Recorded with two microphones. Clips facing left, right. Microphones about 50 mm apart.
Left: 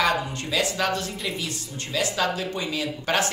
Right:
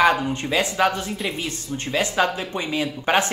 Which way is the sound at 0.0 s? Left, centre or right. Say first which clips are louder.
Right 5 dB; right.